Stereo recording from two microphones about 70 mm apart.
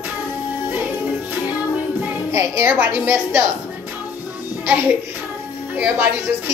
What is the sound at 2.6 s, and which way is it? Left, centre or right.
Speech, right.